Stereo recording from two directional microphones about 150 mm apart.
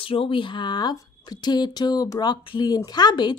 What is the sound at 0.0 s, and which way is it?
Speech, 35° left (ahead or behind).